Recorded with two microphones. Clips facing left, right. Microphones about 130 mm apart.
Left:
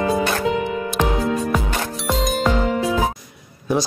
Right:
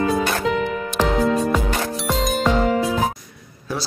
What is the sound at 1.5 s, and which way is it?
Music, centre (ahead or behind).